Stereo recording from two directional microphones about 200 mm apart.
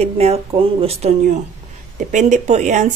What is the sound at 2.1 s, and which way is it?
Speech, 35° right (ahead or behind).